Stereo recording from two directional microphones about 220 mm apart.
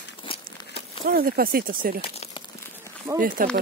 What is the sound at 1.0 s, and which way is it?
Speech, 40° right (ahead or behind).